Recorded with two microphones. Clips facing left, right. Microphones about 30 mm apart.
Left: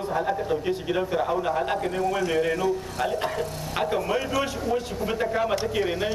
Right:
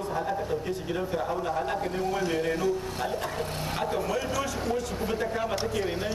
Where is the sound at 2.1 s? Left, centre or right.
Centre.